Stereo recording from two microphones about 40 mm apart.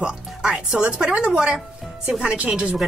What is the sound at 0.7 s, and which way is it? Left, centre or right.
Speech, right.